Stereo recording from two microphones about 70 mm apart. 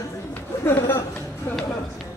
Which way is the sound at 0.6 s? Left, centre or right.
Left.